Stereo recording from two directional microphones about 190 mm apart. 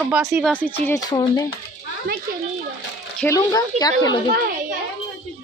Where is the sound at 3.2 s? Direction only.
20° left (ahead or behind).